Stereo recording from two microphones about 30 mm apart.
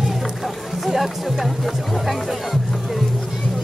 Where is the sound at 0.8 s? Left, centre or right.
Centre.